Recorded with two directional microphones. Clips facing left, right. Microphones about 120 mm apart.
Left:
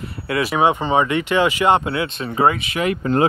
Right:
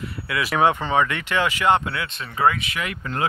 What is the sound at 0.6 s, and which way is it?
Speech, 15° left (ahead or behind).